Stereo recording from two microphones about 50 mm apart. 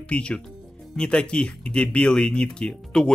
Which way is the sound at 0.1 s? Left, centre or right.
Left.